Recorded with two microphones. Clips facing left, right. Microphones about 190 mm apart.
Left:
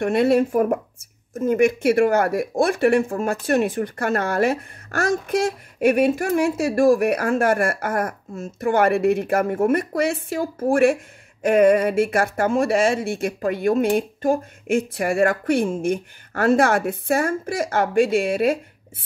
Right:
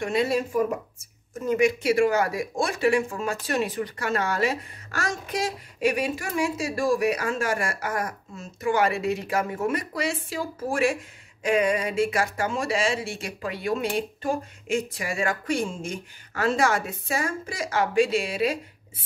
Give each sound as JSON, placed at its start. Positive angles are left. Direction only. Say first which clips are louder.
{"t": 0.0, "sound": "speech", "louder": "left 7 dB", "side_deg": 60}